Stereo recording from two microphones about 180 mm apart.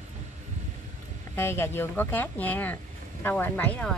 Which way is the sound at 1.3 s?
15° left (ahead or behind).